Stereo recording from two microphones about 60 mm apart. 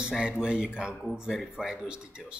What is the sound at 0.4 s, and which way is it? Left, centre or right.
Speech, centre.